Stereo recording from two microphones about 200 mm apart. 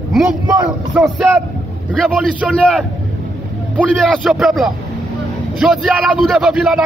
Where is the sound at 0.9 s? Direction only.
5° right (ahead or behind).